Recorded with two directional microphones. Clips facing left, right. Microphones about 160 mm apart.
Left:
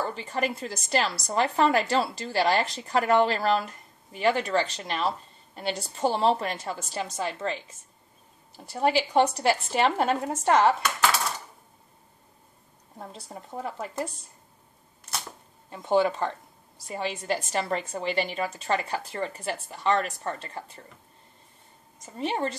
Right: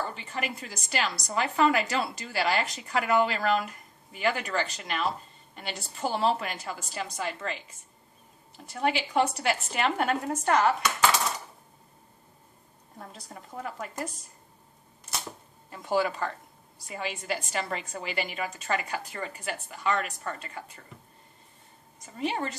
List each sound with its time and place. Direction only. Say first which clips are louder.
0.0 s speech: left 5 dB; 35° left (ahead or behind)
8.6 s speech: left 4 dB; 35° left (ahead or behind)
13.1 s speech: left 4 dB; 25° left (ahead or behind)
15.7 s speech: left 4 dB; 25° left (ahead or behind)
22.1 s speech: left 2 dB; 30° left (ahead or behind)